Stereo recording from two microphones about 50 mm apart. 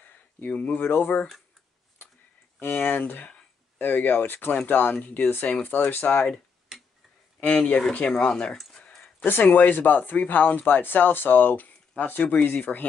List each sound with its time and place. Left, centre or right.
0.0 s speech: left
2.6 s speech: left
7.3 s speech: left
8.1 s speech: centre
9.2 s speech: left